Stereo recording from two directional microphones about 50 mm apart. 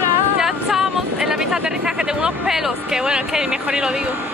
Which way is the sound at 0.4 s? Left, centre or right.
Centre.